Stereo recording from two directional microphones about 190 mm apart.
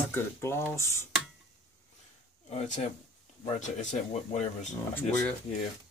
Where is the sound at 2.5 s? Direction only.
35° left (ahead or behind).